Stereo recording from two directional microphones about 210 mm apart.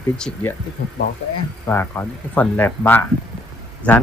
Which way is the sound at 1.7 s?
10° left (ahead or behind).